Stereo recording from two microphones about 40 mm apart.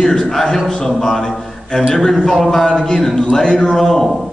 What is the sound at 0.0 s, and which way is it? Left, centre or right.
A man's voice, centre.